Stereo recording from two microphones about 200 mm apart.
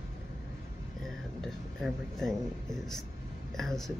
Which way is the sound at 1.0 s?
Centre (ahead or behind).